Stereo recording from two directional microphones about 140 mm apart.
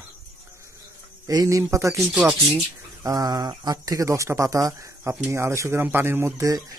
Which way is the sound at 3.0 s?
25° right (ahead or behind).